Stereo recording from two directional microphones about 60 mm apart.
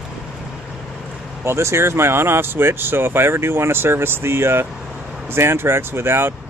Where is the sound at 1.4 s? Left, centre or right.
Right.